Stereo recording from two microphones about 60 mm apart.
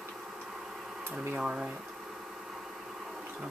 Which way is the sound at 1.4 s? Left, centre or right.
Centre.